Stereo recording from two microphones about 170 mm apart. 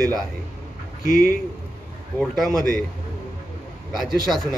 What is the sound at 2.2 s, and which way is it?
Speech, centre (ahead or behind).